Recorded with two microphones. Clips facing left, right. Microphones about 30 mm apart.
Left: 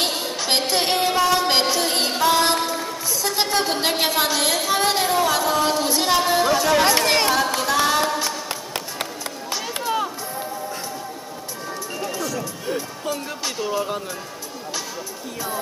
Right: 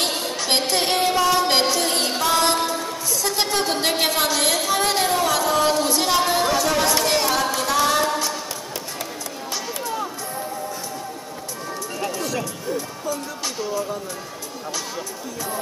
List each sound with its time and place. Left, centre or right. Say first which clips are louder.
0.1 s a sound: even; centre
1.7 s music: even; centre
4.7 s speech: left 3 dB; centre
6.8 s speech: left 2 dB; left
7.5 s a capella: even; centre
9.8 s run: left 6 dB; left
13.7 s speech: left 2 dB; left